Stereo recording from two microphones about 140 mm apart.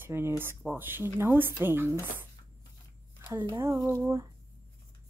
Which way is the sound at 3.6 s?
20° right (ahead or behind).